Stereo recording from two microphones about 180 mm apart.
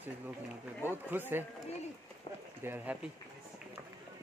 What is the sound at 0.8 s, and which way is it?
Speech, 10° right (ahead or behind).